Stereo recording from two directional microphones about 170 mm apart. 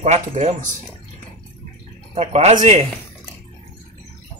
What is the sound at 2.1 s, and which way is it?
Speech, 40° right (ahead or behind).